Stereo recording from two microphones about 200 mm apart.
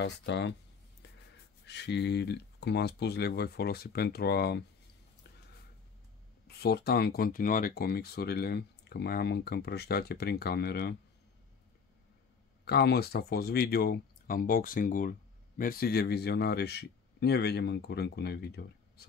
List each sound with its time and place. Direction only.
0.0 s speech: 60° left (ahead or behind)
1.7 s speech: 60° left (ahead or behind)
6.4 s speech: 50° left (ahead or behind)
12.6 s speech: 55° left (ahead or behind)